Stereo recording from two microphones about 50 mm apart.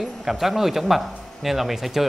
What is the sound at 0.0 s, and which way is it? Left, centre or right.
A man's voice, centre.